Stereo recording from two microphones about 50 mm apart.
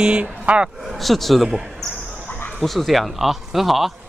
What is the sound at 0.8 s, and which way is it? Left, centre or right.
Speech, centre.